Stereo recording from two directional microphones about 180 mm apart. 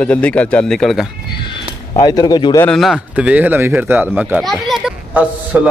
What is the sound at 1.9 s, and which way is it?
Speech, 20° left (ahead or behind).